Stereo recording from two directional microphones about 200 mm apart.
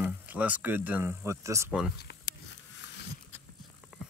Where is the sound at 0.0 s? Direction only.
5° right (ahead or behind).